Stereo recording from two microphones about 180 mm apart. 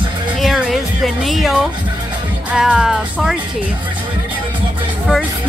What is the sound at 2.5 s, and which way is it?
Speech, 5° right (ahead or behind).